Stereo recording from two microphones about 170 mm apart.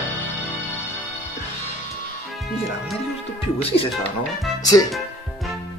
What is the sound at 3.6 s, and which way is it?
Speech, 35° left (ahead or behind).